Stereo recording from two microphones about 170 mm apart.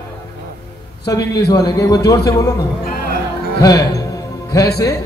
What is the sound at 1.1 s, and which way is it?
A man's voice, 20° left (ahead or behind).